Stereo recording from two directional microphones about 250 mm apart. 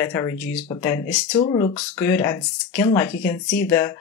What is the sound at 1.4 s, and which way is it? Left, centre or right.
Speech, centre.